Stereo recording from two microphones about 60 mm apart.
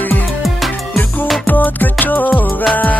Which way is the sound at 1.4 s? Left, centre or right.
Left.